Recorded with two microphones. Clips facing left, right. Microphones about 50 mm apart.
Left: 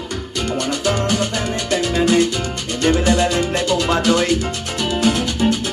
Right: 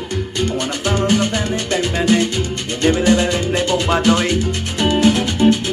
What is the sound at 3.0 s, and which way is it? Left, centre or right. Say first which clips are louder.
Music: right 1 dB; right.